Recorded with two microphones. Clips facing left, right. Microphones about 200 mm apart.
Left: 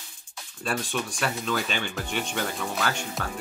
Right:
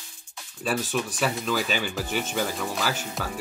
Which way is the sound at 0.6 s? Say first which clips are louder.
Right 2 dB; 5° right (ahead or behind).